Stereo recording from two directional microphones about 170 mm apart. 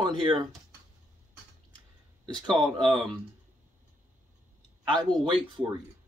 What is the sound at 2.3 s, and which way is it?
Speech, centre (ahead or behind).